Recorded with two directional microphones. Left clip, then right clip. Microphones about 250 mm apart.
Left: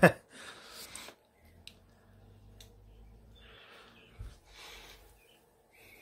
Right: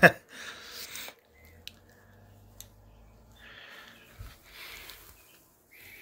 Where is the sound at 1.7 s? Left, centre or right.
Centre.